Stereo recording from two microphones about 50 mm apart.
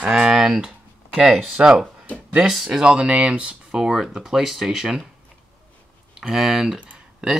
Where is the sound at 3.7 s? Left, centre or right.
Centre.